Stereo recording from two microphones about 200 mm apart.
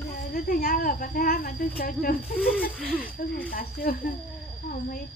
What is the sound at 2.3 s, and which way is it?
Speech, centre (ahead or behind).